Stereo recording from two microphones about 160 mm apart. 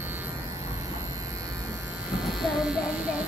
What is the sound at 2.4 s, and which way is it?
Electric shaver, 5° right (ahead or behind).